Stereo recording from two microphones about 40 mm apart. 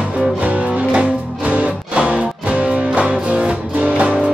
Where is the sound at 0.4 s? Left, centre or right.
Right.